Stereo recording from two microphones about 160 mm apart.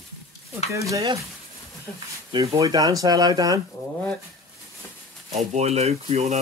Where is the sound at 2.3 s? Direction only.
20° right (ahead or behind).